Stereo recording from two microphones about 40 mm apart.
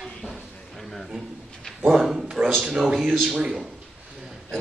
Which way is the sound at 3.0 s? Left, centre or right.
Centre.